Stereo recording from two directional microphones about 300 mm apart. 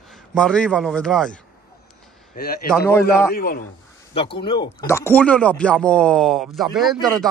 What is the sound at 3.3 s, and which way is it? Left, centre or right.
Speech, left.